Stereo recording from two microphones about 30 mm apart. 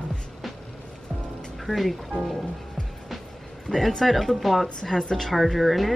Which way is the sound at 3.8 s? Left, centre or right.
Centre.